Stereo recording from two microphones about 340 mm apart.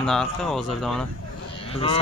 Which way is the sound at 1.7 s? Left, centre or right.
Centre.